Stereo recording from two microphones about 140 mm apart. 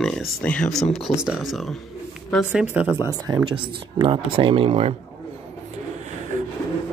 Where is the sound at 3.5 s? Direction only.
35° right (ahead or behind).